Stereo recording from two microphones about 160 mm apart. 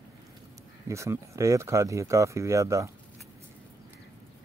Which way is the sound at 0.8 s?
20° right (ahead or behind).